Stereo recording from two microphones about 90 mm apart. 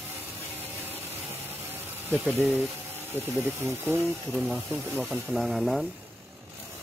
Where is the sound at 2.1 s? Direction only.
5° right (ahead or behind).